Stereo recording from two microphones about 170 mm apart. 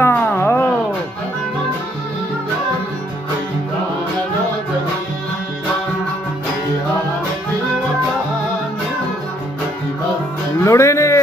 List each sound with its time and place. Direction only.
0.0 s music: 15° left (ahead or behind)
10.6 s music: 15° left (ahead or behind)